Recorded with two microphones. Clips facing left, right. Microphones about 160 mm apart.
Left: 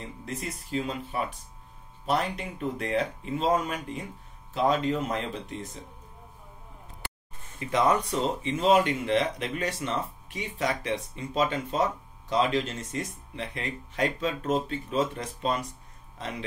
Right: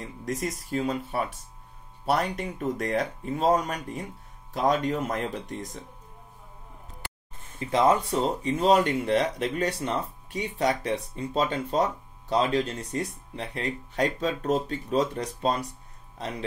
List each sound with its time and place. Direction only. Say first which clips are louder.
0.2 s speech: right 7 dB; 45° right (ahead or behind)
2.0 s speech: right 2 dB; 45° right (ahead or behind)
7.5 s speech: right 2 dB; 30° right (ahead or behind)
8.4 s speech: even; 40° right (ahead or behind)